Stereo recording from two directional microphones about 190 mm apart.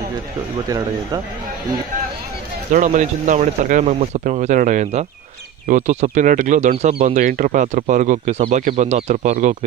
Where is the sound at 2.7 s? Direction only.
40° right (ahead or behind).